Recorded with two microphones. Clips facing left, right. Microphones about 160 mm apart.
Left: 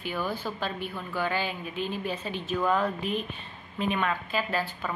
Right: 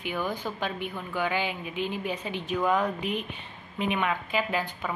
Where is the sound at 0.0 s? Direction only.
15° right (ahead or behind).